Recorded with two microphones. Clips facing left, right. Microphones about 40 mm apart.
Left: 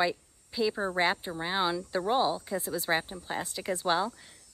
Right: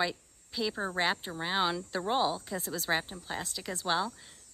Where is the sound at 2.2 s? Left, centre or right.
Left.